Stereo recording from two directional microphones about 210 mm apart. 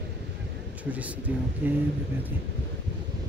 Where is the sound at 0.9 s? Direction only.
5° right (ahead or behind).